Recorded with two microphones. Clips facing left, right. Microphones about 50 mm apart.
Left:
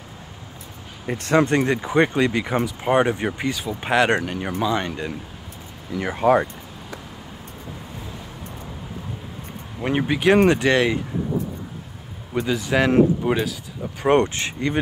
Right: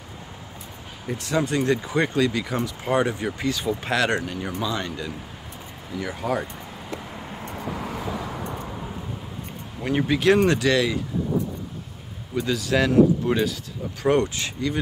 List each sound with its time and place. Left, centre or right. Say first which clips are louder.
1.0 s speech: left 6 dB; left
1.7 s speech: left 3 dB; left
5.9 s speech: left 8 dB; left
7.6 s vehicle: right 8 dB; right
9.8 s speech: left 1 dB; centre; by 11.0 s left
12.4 s speech: left 2 dB; left
14.0 s speech: left 3 dB; left